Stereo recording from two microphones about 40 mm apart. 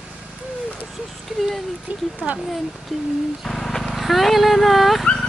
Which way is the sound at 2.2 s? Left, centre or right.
Right.